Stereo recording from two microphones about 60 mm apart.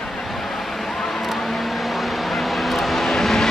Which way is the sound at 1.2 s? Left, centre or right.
Centre.